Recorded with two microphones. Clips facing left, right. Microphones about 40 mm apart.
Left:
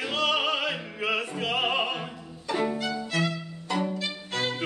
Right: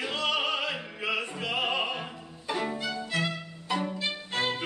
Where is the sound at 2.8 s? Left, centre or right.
Centre.